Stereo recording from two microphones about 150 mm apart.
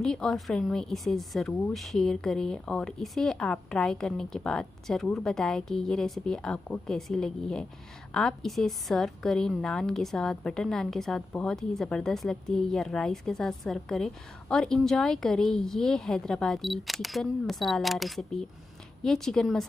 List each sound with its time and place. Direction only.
0.0 s a woman's voice: 5° left (ahead or behind)